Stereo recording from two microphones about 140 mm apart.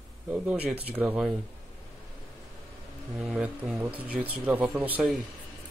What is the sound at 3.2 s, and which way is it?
Speech, 5° right (ahead or behind).